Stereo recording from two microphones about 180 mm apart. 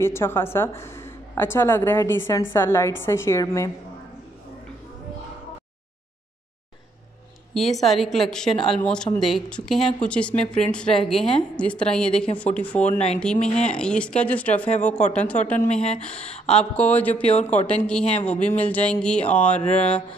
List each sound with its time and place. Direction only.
0.0 s a woman's voice: 15° left (ahead or behind)
7.5 s a woman's voice: centre (ahead or behind)
15.0 s speech: 40° left (ahead or behind)
15.4 s a woman's voice: 5° left (ahead or behind)
16.1 s speech: 35° left (ahead or behind)
16.4 s a woman's voice: 5° left (ahead or behind)
19.6 s speech: 35° left (ahead or behind)